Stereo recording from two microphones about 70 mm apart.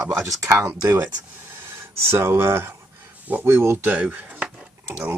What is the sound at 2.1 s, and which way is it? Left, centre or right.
Speech, right.